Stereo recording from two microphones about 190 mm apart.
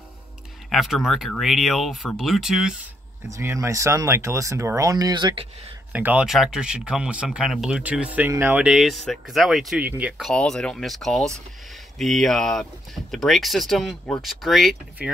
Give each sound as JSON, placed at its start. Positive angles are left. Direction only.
{"t": 0.7, "sound": "speech", "side_deg": 0}
{"t": 3.3, "sound": "speech", "side_deg": -15}
{"t": 5.9, "sound": "speech", "side_deg": -5}